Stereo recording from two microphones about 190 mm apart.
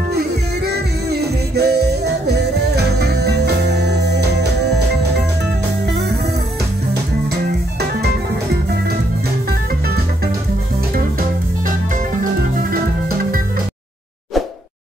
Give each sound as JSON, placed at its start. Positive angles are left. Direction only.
{"t": 0.7, "sound": "music", "side_deg": -60}